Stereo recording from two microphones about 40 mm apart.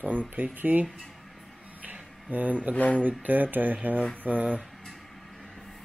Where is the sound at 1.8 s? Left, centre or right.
Right.